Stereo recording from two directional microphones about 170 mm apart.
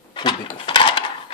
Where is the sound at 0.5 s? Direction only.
30° left (ahead or behind).